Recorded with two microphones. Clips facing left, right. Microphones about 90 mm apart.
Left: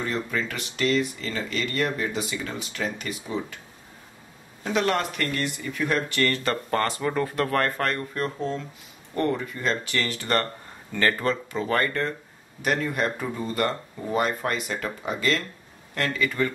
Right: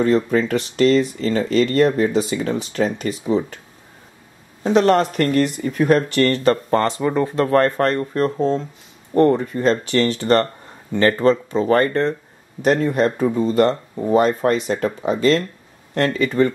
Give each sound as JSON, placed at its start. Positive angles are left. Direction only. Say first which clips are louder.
{"t": 0.0, "sound": "speech", "louder": "right 11 dB", "side_deg": -40}
{"t": 4.6, "sound": "speech", "louder": "right 9 dB", "side_deg": -35}